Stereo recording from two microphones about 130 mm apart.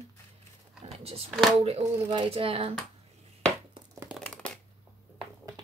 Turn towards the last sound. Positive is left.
turn(degrees=5)  # may be behind; listen again after turning